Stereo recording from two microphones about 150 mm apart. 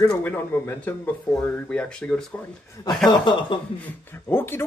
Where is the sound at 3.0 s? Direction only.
30° left (ahead or behind).